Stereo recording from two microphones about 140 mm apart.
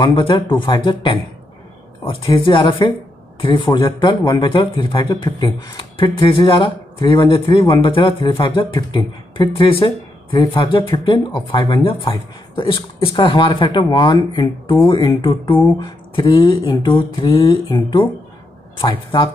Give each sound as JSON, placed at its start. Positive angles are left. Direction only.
{"t": 0.0, "sound": "speech", "side_deg": 35}